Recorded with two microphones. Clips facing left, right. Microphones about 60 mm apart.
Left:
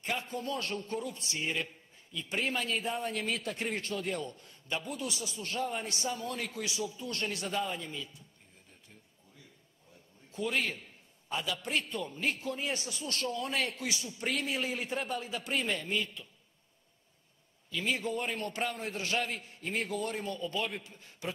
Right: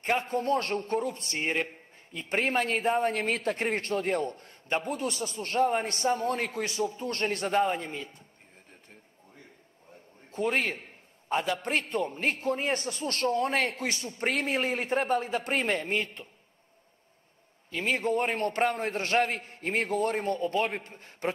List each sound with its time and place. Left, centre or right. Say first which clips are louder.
0.0 s a man's voice: right 8 dB; right
10.3 s a man's voice: right 5 dB; right
17.6 s a man's voice: right 5 dB; right